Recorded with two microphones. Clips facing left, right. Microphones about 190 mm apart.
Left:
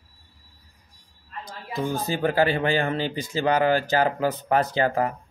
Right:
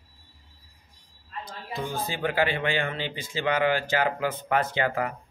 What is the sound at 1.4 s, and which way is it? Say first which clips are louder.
A man's voice: left 4 dB; 45° left (ahead or behind).